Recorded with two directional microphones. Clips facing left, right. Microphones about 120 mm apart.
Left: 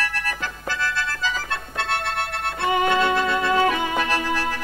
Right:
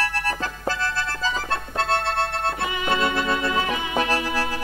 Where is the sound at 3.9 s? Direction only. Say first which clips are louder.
Even; 35° right (ahead or behind).